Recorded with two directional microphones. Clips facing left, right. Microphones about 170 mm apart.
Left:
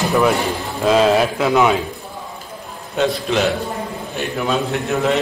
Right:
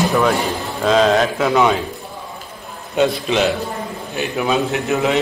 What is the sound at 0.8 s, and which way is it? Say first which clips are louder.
Speech: even; 5° left (ahead or behind).